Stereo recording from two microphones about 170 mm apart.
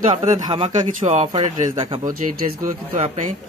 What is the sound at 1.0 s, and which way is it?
Speech, 40° right (ahead or behind).